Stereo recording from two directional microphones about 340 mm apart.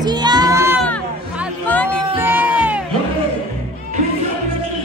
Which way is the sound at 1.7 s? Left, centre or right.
Centre.